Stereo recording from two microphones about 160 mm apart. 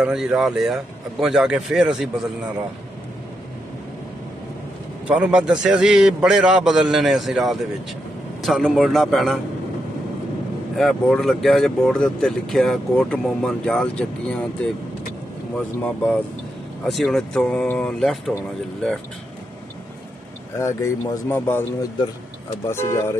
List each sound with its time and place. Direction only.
0.0 s a man's voice: 5° right (ahead or behind)
5.0 s a man's voice: 5° right (ahead or behind)
10.8 s a man's voice: centre (ahead or behind)
15.8 s a man's voice: 10° left (ahead or behind)
20.5 s speech: 20° left (ahead or behind)
22.7 s speech: 15° left (ahead or behind)